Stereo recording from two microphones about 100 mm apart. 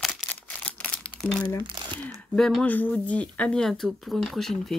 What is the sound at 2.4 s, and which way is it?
Speech, 5° left (ahead or behind).